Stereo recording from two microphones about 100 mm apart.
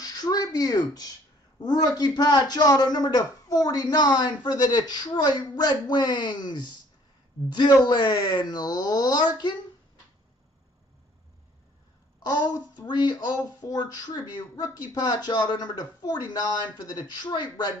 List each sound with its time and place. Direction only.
0.0 s a sound: 40° left (ahead or behind)
1.6 s speech: 45° left (ahead or behind)
12.2 s a child's voice: 40° left (ahead or behind)